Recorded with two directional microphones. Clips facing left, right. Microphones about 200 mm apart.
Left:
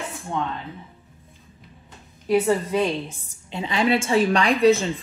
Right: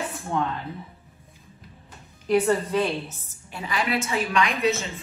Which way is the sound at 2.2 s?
10° left (ahead or behind).